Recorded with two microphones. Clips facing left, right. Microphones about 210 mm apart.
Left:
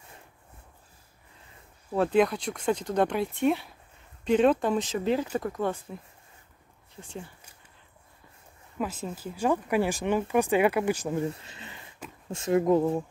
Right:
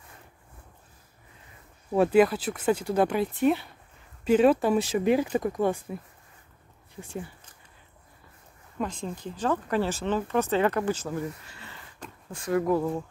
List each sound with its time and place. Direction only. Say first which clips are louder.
1.9 s speech: right 3 dB; 10° right (ahead or behind)
8.7 s speech: even; 5° left (ahead or behind); by 13.0 s 20° left (ahead or behind)